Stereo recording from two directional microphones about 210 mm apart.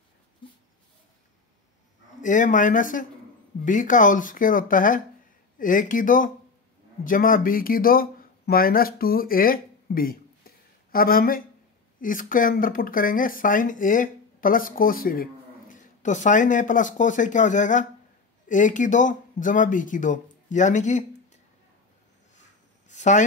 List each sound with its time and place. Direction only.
2.2 s speech: 35° left (ahead or behind)
22.8 s speech: 35° left (ahead or behind)